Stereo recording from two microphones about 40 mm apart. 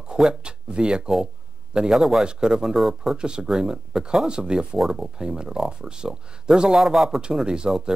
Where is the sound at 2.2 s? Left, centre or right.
Centre.